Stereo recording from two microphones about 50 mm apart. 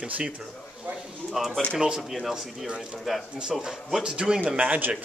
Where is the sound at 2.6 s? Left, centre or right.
Centre.